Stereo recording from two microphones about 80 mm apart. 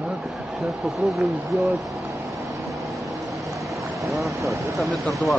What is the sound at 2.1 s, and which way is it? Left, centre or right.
Vehicle, right.